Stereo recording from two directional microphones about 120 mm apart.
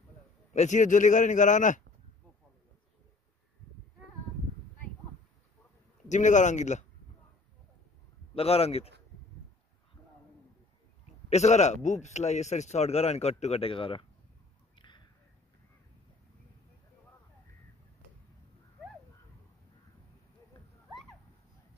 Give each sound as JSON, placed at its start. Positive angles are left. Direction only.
{"t": 0.5, "sound": "a man's voice", "side_deg": 80}
{"t": 6.0, "sound": "a man's voice", "side_deg": 90}
{"t": 8.4, "sound": "a man's voice", "side_deg": 55}
{"t": 11.2, "sound": "a man's voice", "side_deg": 70}
{"t": 14.8, "sound": "a sound", "side_deg": 40}